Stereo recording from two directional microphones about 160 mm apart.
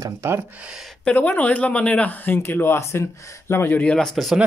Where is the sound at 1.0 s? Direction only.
10° left (ahead or behind).